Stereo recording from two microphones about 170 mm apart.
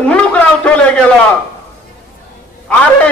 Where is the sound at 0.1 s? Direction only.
5° left (ahead or behind).